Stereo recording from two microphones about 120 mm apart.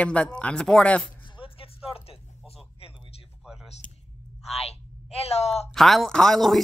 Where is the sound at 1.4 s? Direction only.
50° left (ahead or behind).